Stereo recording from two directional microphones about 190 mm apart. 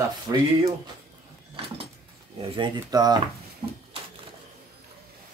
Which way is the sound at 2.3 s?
25° right (ahead or behind).